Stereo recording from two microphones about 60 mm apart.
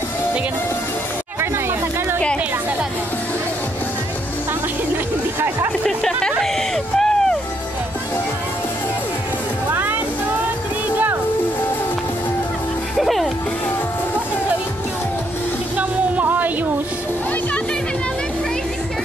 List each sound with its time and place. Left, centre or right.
5.9 s music: centre
6.4 s a sound: centre
12.9 s music: centre
15.8 s music: right